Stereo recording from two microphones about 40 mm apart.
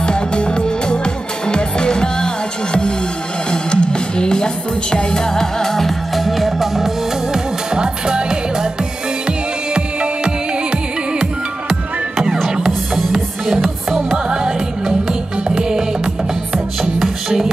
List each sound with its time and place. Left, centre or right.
0.0 s music: left; by 6.9 s centre
7.7 s music: centre
9.8 s music: right
12.4 s music: centre
17.0 s music: centre